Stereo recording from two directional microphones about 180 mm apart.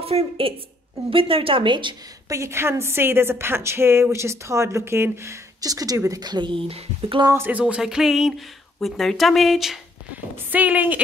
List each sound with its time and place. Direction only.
0.0 s a woman's voice: 35° right (ahead or behind)
7.2 s a woman's voice: 10° right (ahead or behind)